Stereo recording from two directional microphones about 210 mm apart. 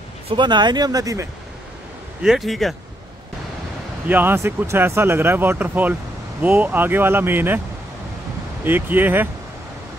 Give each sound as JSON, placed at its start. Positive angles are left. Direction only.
{"t": 0.3, "sound": "speech", "side_deg": -20}
{"t": 2.2, "sound": "speech", "side_deg": 0}
{"t": 4.1, "sound": "speech", "side_deg": -10}
{"t": 8.6, "sound": "speech", "side_deg": -10}